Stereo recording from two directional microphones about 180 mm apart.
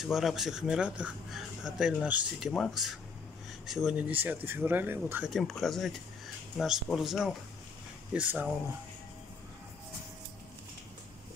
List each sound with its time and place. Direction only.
0.0 s speech: centre (ahead or behind)
5.3 s speech: centre (ahead or behind)